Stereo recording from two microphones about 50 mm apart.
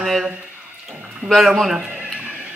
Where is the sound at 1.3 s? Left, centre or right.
Centre.